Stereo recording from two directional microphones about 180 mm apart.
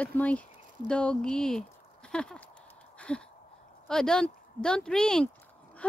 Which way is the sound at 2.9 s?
5° left (ahead or behind).